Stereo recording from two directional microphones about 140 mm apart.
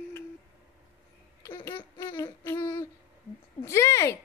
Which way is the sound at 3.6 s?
20° left (ahead or behind).